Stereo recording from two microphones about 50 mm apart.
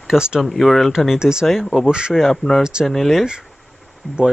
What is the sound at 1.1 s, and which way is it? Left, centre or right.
Speech, centre.